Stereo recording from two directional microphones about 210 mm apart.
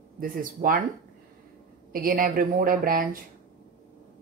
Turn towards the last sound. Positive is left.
turn(degrees=-45)  # may be behind; listen again after turning